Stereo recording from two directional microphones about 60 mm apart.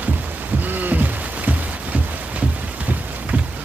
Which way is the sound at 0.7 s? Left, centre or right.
Right.